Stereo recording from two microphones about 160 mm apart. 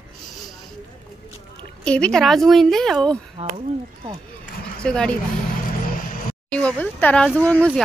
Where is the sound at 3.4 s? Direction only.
40° right (ahead or behind).